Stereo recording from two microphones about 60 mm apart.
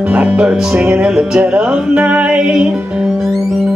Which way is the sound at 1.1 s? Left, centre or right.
Centre.